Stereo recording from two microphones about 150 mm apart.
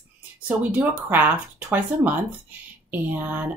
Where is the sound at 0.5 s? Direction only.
10° right (ahead or behind).